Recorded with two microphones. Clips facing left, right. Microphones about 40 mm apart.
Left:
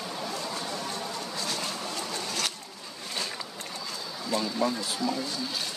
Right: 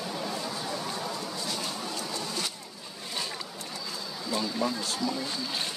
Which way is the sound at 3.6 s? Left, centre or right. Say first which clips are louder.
Left 1 dB; left.